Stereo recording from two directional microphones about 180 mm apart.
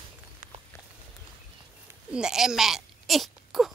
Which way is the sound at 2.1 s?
5° right (ahead or behind).